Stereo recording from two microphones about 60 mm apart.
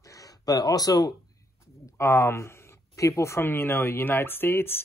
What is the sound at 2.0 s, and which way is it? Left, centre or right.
Speech, left.